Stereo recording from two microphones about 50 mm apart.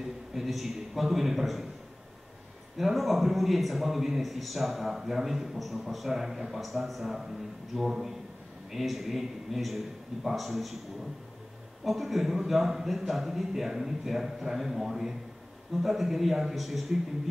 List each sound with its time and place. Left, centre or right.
0.3 s a man's voice: centre
2.8 s a man's voice: centre
11.8 s a man's voice: centre